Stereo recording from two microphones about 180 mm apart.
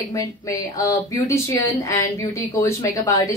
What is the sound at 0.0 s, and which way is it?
A woman's voice, 20° left (ahead or behind).